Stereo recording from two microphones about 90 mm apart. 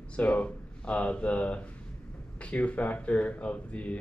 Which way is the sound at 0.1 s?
15° left (ahead or behind).